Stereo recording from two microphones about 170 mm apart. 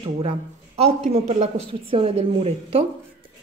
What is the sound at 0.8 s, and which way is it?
A woman's voice, 40° right (ahead or behind).